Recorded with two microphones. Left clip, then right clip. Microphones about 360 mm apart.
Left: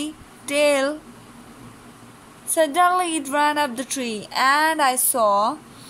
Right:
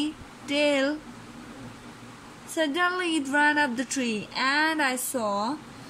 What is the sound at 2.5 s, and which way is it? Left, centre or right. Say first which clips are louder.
Speech: left 8 dB; centre.